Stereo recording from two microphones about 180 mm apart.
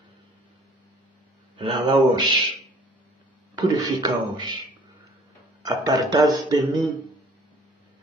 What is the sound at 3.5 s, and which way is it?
Speech, 25° right (ahead or behind).